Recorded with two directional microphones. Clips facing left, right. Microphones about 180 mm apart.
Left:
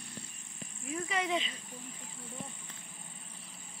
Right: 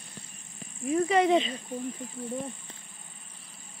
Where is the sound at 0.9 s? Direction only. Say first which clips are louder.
Right 11 dB; 40° right (ahead or behind).